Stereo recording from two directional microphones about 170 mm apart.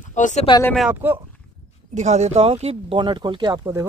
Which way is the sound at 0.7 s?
Centre (ahead or behind).